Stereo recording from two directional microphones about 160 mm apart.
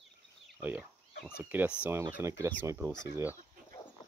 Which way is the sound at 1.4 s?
10° right (ahead or behind).